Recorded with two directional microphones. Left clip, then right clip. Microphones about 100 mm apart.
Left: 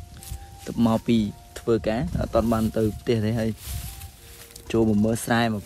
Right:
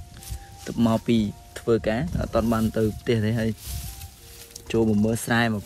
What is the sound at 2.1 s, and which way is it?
Speech, 90° left.